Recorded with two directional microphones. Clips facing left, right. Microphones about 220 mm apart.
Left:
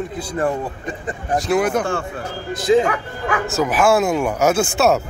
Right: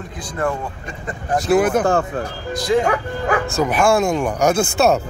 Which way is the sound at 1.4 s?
5° right (ahead or behind).